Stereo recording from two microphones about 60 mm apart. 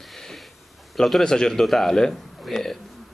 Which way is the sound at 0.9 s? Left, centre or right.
Centre.